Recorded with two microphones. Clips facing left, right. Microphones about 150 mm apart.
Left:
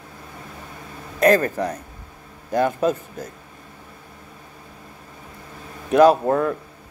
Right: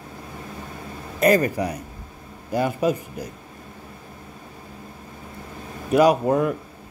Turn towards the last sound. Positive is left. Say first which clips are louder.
# left 2 dB
turn(degrees=-15)  # may be behind; listen again after turning